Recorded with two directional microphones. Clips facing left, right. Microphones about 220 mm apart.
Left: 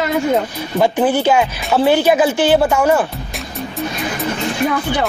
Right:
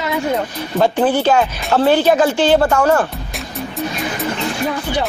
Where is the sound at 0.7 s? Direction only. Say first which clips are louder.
Even; 10° left (ahead or behind).